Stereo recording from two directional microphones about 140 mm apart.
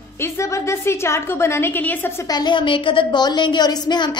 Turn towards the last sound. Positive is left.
turn(degrees=30)  # may be behind; listen again after turning